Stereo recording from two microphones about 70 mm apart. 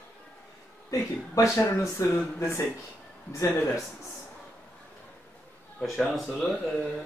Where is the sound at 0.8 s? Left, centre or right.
Left.